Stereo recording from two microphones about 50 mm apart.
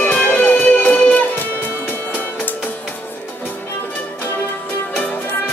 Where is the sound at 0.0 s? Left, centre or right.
Left.